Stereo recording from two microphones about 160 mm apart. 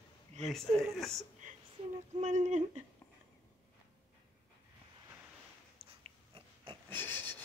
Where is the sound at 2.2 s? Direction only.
50° right (ahead or behind).